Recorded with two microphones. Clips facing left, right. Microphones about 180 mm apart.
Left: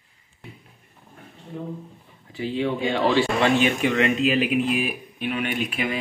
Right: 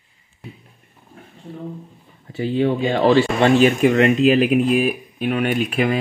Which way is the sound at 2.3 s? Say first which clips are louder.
Right 6 dB; 40° right (ahead or behind).